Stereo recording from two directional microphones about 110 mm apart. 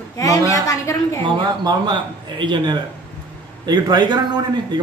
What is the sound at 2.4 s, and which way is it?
A man's voice, 45° right (ahead or behind).